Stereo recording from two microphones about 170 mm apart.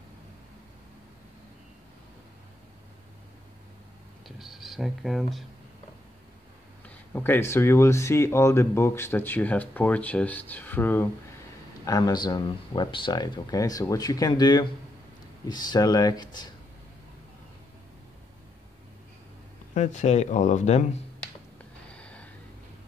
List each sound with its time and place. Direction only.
4.4 s speech: centre (ahead or behind)
6.9 s speech: 10° left (ahead or behind)
11.8 s speech: 25° left (ahead or behind)
19.7 s speech: 45° left (ahead or behind)
21.9 s gasp: 5° left (ahead or behind)